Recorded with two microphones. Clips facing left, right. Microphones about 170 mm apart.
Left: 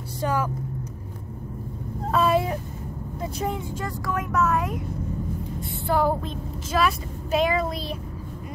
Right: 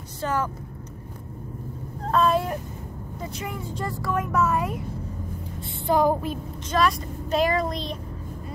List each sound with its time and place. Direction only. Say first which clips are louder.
0.2 s speech: left 1 dB; 10° left (ahead or behind)
2.0 s speech: even; 5° left (ahead or behind)
3.7 s speech: right 1 dB; centre (ahead or behind)
5.9 s a sound: right 2 dB; 15° right (ahead or behind)
6.7 s speech: right 1 dB; 5° left (ahead or behind)